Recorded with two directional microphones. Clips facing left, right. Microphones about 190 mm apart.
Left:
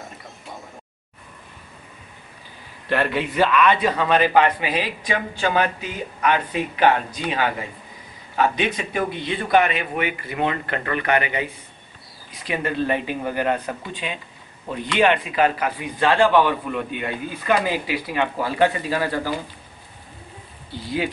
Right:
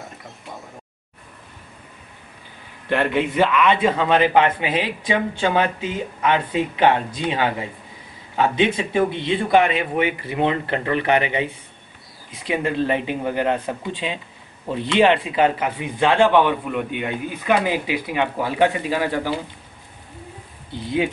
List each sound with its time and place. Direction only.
2.9 s a man's voice: 20° right (ahead or behind)